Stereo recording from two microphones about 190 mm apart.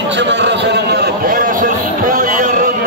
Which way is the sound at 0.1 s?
65° right (ahead or behind).